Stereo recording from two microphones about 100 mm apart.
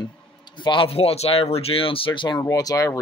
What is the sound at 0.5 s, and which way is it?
Speech, 55° left (ahead or behind).